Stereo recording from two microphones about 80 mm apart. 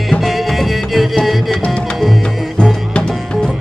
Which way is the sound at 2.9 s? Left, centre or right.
Centre.